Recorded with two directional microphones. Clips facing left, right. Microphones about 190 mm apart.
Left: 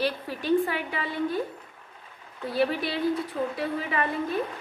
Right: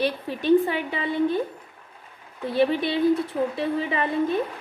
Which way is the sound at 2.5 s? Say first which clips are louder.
Right 4 dB; 20° right (ahead or behind).